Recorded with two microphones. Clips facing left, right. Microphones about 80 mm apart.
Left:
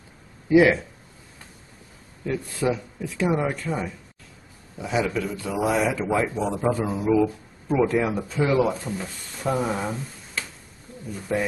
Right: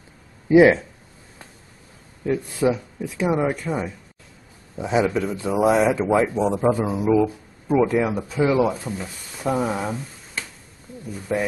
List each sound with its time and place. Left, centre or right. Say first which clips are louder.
0.5 s speech: right 4 dB; right
2.2 s a man's voice: right 4 dB; centre
4.7 s a man's voice: right 4 dB; right; by 11.4 s centre